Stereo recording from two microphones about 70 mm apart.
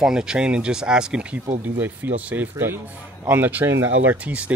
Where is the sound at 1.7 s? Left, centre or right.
Right.